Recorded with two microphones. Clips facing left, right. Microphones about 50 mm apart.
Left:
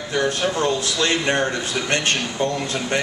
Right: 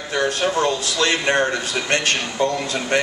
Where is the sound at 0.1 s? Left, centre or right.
Right.